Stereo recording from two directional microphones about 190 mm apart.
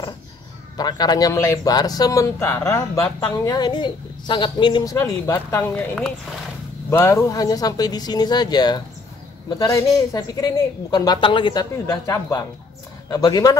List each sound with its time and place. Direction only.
0.7 s a man's voice: 20° left (ahead or behind)